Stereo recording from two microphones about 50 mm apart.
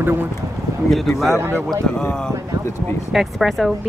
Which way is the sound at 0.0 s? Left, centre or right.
Right.